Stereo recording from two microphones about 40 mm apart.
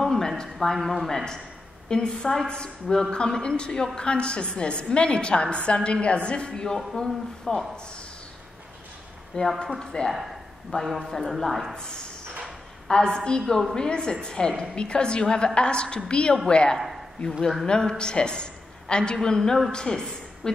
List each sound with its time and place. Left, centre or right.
0.0 s a sound: centre
1.0 s a woman's voice: centre
7.1 s a woman's voice: centre
9.3 s a woman's voice: left
10.7 s a woman's voice: centre
12.8 s a woman's voice: centre
16.7 s a sound: centre
17.3 s a woman's voice: centre
17.6 s a woman's voice: left